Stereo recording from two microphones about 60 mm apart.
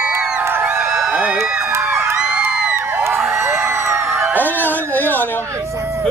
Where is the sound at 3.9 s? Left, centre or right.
Right.